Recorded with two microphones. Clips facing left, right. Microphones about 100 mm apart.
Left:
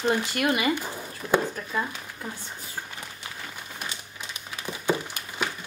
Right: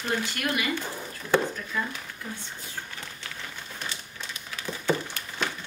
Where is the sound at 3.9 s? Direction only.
15° left (ahead or behind).